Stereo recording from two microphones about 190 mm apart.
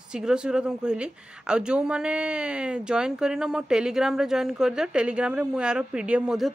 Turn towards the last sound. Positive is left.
turn(degrees=-5)  # may be behind; listen again after turning